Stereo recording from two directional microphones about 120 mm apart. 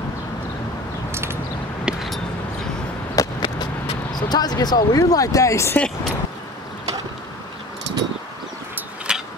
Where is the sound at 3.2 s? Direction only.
30° left (ahead or behind).